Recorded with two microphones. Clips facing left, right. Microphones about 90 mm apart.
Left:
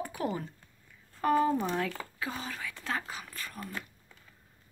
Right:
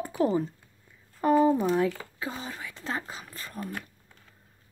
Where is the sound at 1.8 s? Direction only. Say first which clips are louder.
Right 6 dB; 25° right (ahead or behind).